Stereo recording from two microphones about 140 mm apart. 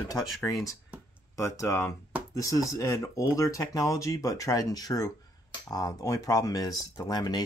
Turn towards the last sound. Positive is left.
turn(degrees=30)  # may be behind; listen again after turning